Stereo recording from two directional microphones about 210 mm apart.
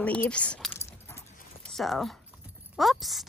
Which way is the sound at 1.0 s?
10° left (ahead or behind).